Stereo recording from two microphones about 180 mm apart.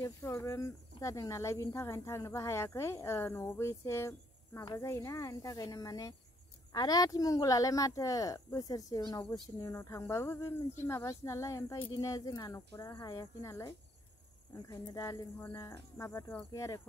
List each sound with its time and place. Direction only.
0.0 s speech: 15° left (ahead or behind)